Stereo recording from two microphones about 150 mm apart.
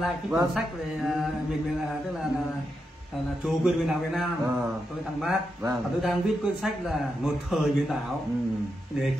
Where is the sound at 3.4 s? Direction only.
Centre (ahead or behind).